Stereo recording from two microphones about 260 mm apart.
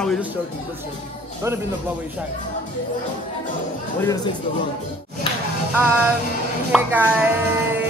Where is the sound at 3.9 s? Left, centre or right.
Centre.